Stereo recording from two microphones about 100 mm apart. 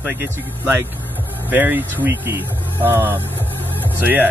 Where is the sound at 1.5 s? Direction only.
20° right (ahead or behind).